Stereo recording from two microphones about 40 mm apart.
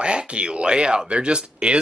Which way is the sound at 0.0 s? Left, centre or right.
Right.